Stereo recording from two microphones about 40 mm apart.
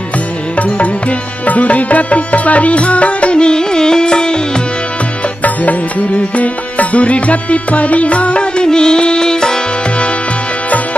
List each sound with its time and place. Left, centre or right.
0.6 s music: left
5.4 s music: left; by 9.6 s centre